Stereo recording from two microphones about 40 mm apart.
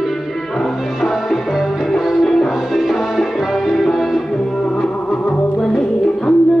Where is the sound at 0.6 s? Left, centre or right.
Centre.